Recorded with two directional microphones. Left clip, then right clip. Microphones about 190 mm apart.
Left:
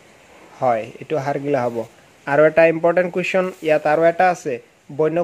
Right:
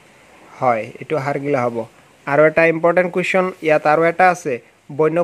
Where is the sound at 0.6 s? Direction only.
20° right (ahead or behind).